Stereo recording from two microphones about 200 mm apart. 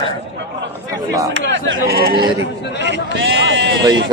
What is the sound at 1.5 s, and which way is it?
A man's voice, 60° right (ahead or behind).